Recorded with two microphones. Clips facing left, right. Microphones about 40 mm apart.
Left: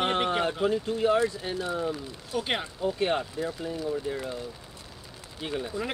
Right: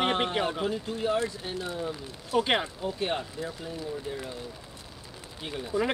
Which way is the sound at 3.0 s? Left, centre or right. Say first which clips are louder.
Left 3 dB; left.